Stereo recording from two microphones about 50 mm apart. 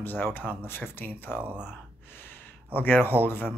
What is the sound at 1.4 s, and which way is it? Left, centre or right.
Speech, centre.